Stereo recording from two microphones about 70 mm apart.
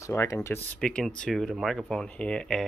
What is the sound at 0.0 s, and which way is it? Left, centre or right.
Speech, left.